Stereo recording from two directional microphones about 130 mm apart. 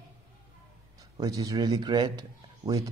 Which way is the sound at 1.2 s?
30° right (ahead or behind).